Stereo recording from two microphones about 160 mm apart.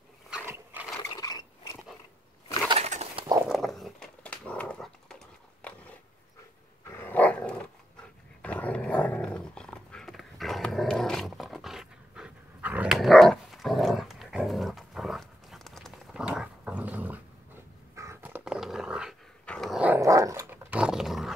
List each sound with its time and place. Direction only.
0.7 s ratchet: 10° right (ahead or behind)
1.1 s a sound: 25° left (ahead or behind)
2.7 s bird: 45° right (ahead or behind)
3.4 s dog: centre (ahead or behind)
5.6 s a sound: 5° left (ahead or behind)
6.9 s dog: 10° left (ahead or behind); by 20.0 s 5° right (ahead or behind)
20.0 s dog: 20° right (ahead or behind)
20.7 s dog: 5° right (ahead or behind)